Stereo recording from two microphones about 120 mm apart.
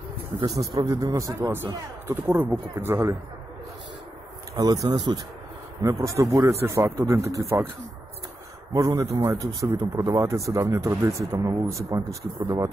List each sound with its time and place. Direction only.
0.4 s speech: 35° right (ahead or behind)
4.6 s speech: 35° right (ahead or behind)
8.7 s speech: 30° right (ahead or behind)